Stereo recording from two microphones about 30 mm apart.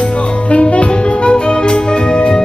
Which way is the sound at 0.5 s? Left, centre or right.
Left.